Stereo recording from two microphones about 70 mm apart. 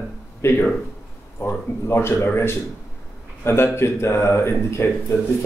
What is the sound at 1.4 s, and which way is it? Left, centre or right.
A man's voice, left.